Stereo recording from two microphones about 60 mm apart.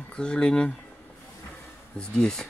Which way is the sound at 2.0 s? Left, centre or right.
Centre.